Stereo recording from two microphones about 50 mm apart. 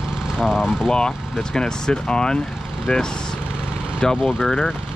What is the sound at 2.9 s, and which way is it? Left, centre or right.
Speech, left.